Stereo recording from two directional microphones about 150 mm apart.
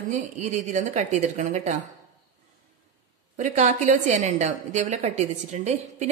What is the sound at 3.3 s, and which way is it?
A woman's voice, 50° right (ahead or behind).